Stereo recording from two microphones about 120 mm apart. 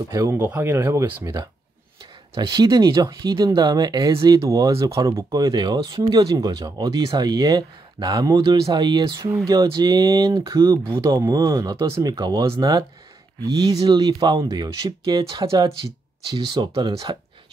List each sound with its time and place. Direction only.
0.1 s speech: 25° right (ahead or behind)
2.3 s speech: 35° right (ahead or behind)